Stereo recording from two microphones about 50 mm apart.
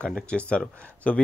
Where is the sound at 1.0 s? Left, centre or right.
Left.